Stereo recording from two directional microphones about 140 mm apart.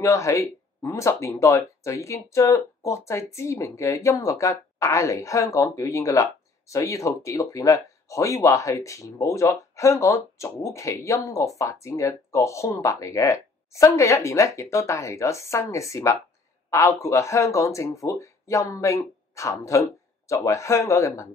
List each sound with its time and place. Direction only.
0.0 s speech: 20° left (ahead or behind)